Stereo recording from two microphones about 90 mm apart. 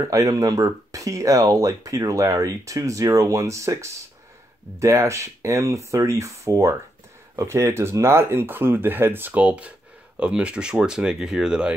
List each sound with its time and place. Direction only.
0.1 s speech: 40° right (ahead or behind); by 11.7 s 10° right (ahead or behind)